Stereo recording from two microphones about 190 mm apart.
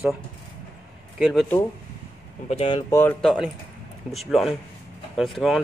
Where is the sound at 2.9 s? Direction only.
10° left (ahead or behind).